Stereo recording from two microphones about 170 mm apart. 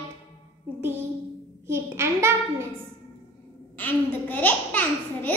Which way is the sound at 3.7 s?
10° left (ahead or behind).